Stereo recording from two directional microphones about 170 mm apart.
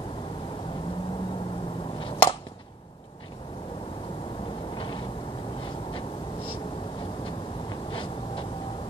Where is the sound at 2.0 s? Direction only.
30° left (ahead or behind).